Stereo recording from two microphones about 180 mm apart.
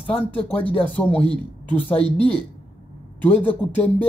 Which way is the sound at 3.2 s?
10° left (ahead or behind).